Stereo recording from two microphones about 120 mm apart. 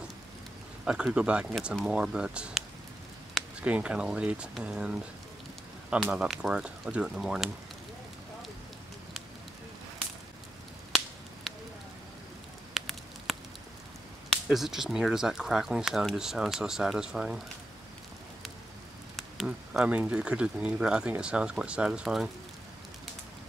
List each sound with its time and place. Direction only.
0.8 s speech: 10° right (ahead or behind)
3.6 s speech: 10° right (ahead or behind)
11.5 s a sound: centre (ahead or behind)
12.7 s a sound: centre (ahead or behind)
14.3 s speech: centre (ahead or behind)
19.1 s speech: centre (ahead or behind)